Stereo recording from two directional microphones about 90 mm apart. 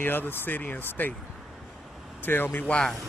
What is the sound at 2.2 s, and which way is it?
Speech, 20° left (ahead or behind).